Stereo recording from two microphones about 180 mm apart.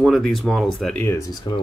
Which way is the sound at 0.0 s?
Centre (ahead or behind).